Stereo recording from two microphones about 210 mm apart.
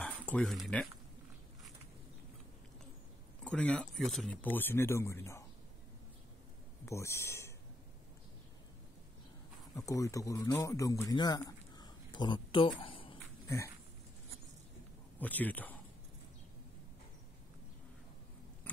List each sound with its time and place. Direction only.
0.0 s speech: 5° left (ahead or behind)
3.4 s speech: 5° left (ahead or behind)
6.9 s speech: 15° left (ahead or behind)
9.8 s a man's voice: 15° left (ahead or behind)
15.1 s speech: 10° left (ahead or behind)